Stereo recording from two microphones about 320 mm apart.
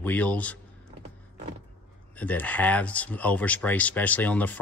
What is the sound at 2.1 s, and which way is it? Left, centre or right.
A man's voice, centre.